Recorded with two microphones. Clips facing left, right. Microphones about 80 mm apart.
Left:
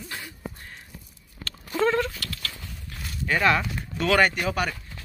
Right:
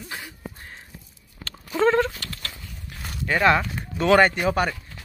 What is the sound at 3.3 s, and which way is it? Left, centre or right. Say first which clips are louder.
Speech: right 3 dB; right.